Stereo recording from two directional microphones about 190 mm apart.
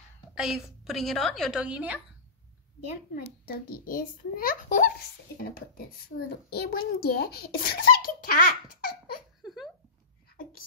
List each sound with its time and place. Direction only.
0.3 s a woman's voice: 5° right (ahead or behind)
3.2 s a child's voice: 50° left (ahead or behind)
9.4 s a sound: centre (ahead or behind)